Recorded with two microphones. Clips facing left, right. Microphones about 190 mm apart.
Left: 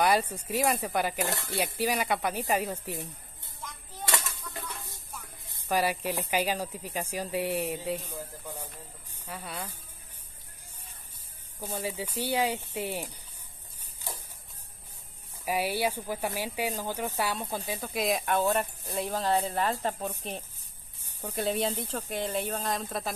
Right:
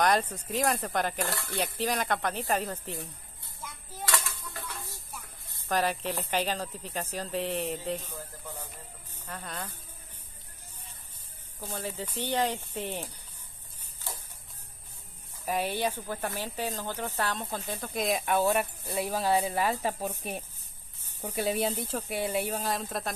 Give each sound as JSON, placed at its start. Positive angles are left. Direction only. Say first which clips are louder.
{"t": 0.0, "sound": "a woman's voice", "louder": "even", "side_deg": 10}
{"t": 1.2, "sound": "speech", "louder": "left 1 dB", "side_deg": 20}
{"t": 1.5, "sound": "a woman's voice", "louder": "left 1 dB", "side_deg": 10}
{"t": 5.5, "sound": "a woman's voice", "louder": "left 1 dB", "side_deg": 10}
{"t": 11.6, "sound": "a woman's voice", "louder": "left 2 dB", "side_deg": 10}
{"t": 15.4, "sound": "a woman's voice", "louder": "left 1 dB", "side_deg": 10}
{"t": 18.4, "sound": "speech", "louder": "right 1 dB", "side_deg": -15}